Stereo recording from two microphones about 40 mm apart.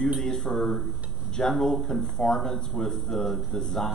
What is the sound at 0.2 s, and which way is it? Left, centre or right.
Speech, centre.